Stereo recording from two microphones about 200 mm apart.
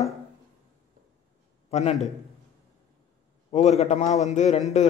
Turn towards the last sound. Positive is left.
turn(degrees=35)  # may be behind; listen again after turning